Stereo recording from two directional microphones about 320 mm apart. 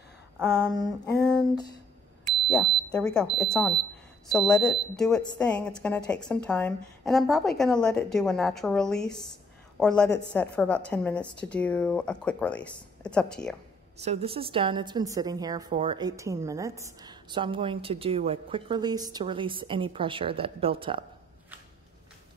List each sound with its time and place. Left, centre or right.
0.4 s a woman's voice: centre
14.0 s a woman's voice: centre